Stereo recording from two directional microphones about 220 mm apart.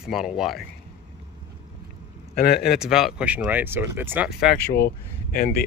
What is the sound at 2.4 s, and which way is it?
Speech, 45° left (ahead or behind).